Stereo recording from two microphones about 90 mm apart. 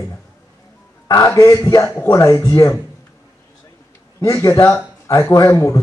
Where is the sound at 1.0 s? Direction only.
45° left (ahead or behind).